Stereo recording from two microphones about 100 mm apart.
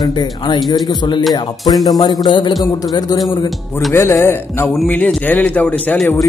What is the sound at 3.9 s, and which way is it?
A man's voice, 25° left (ahead or behind).